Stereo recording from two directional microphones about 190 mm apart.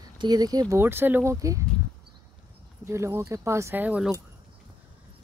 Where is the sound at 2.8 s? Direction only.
15° right (ahead or behind).